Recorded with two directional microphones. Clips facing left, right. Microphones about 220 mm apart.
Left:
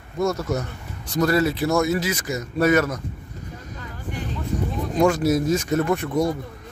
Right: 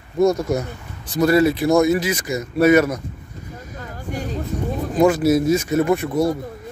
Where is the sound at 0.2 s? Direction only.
15° right (ahead or behind).